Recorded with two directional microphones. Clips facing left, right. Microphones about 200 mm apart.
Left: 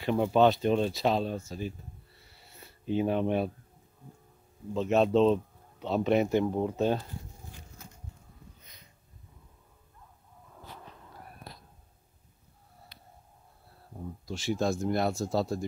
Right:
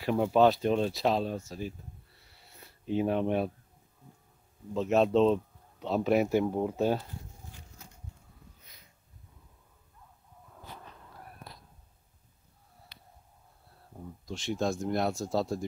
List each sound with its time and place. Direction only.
0.0 s speech: centre (ahead or behind)
2.5 s a sound: centre (ahead or behind)
4.7 s speech: centre (ahead or behind)
14.2 s speech: 5° left (ahead or behind)